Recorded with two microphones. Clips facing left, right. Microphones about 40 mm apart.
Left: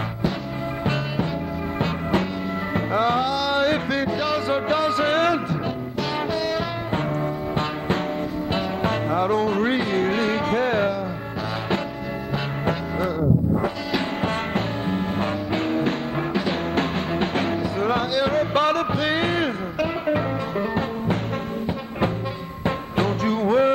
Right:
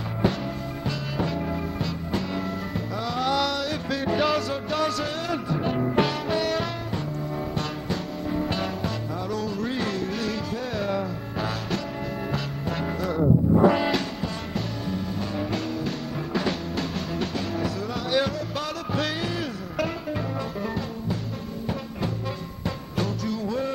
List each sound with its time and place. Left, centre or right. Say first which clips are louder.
2.7 s music: left 8 dB; left
4.5 s music: left 5 dB; left
5.0 s music: left 9 dB; left
6.3 s music: right 1 dB; centre
8.8 s music: left 8 dB; left
14.2 s music: left 6 dB; left
22.7 s music: left 6 dB; left